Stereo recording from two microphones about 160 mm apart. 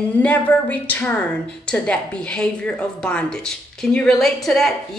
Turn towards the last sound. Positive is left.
turn(degrees=0)  # may be behind; listen again after turning